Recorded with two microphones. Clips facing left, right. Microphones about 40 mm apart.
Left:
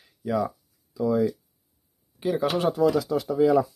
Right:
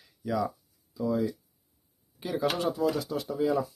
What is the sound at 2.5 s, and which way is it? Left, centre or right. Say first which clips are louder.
Speech: left 3 dB; left.